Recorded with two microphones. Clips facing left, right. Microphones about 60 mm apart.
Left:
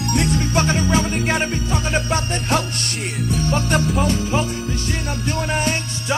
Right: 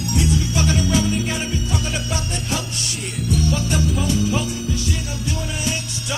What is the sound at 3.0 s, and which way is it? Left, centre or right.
Music, left.